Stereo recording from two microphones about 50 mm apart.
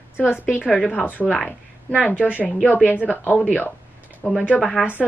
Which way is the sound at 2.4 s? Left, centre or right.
Left.